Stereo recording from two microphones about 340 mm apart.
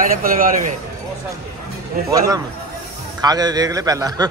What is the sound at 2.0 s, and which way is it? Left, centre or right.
A man's voice, centre.